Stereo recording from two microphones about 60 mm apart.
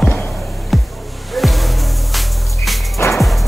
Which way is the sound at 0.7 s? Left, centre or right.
Centre.